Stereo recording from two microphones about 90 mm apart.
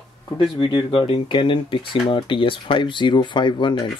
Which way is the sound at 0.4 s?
65° left (ahead or behind).